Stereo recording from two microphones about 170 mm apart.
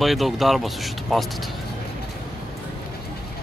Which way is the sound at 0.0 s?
Centre (ahead or behind).